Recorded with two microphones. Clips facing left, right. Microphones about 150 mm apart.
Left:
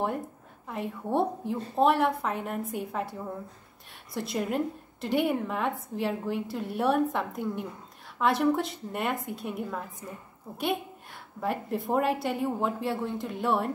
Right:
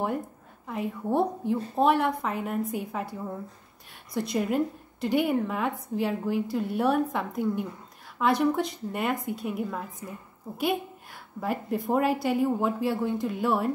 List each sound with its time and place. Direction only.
0.7 s a woman's voice: centre (ahead or behind)
11.4 s a woman's voice: centre (ahead or behind)